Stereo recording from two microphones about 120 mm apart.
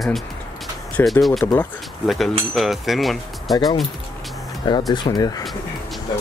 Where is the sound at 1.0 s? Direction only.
20° left (ahead or behind).